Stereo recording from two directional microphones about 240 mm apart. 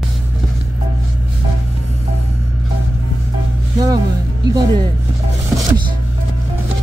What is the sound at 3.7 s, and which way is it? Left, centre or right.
Speech, centre.